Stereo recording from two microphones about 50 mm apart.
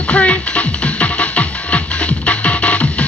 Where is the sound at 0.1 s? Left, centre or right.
Left.